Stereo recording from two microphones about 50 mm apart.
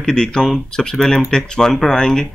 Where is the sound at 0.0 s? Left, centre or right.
Centre.